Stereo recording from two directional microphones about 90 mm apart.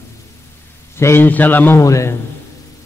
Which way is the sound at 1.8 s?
35° left (ahead or behind).